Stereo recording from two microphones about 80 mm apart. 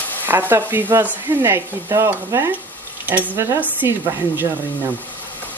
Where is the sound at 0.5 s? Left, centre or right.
Right.